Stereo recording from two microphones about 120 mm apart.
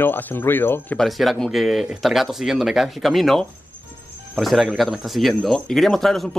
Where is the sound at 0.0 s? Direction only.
15° left (ahead or behind).